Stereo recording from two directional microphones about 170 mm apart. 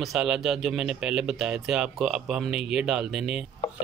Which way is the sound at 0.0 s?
5° right (ahead or behind).